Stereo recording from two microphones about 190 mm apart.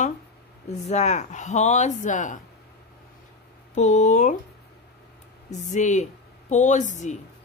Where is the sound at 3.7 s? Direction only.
40° left (ahead or behind).